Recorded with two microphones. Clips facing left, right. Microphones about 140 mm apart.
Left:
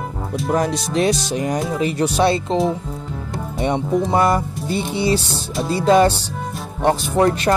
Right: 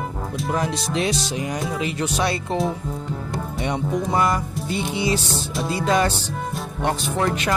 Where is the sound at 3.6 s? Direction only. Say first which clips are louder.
Left 6 dB; 30° left (ahead or behind).